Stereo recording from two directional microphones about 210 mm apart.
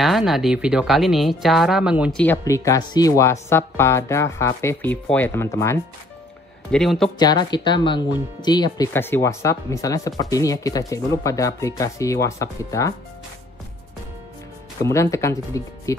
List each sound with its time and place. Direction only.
0.0 s speech: centre (ahead or behind)
2.2 s speech: 15° left (ahead or behind)
6.7 s speech: centre (ahead or behind)
7.2 s speech: 20° left (ahead or behind)
14.8 s speech: 15° left (ahead or behind)